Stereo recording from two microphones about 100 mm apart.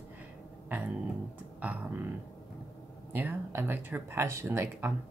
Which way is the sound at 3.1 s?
20° right (ahead or behind).